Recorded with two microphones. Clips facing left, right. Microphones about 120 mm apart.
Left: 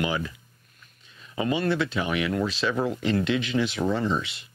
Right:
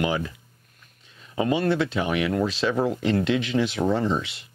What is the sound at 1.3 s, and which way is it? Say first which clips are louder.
Speech: right 3 dB; 40° right (ahead or behind).